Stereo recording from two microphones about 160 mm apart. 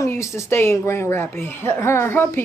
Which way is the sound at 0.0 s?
20° left (ahead or behind).